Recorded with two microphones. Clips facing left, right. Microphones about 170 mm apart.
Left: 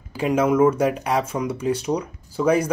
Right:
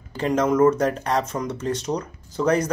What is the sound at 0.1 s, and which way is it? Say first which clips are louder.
Speech: left 1 dB; 10° left (ahead or behind).